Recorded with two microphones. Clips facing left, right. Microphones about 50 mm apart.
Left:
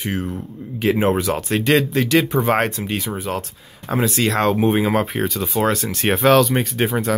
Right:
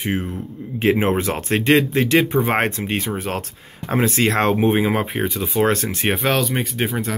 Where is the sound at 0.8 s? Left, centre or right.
Right.